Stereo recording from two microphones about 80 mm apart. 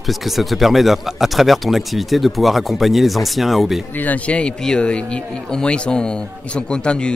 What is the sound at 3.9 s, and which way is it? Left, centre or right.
Speech, centre.